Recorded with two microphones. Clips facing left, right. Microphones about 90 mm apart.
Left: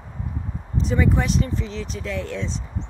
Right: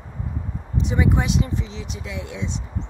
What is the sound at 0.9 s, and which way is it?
Speech, 15° right (ahead or behind).